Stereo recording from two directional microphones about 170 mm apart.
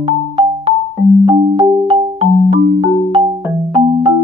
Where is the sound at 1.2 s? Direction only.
30° right (ahead or behind).